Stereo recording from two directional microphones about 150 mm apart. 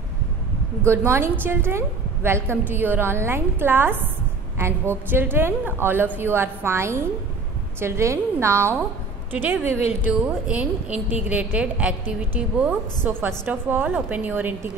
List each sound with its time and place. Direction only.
0.8 s a woman's voice: 15° right (ahead or behind)